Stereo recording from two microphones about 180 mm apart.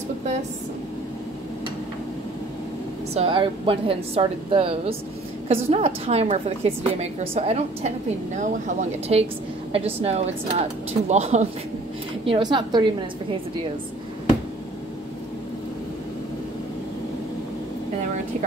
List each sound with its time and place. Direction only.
3.2 s a woman's voice: 30° right (ahead or behind)
9.7 s a woman's voice: 30° right (ahead or behind)
12.3 s a woman's voice: 25° right (ahead or behind)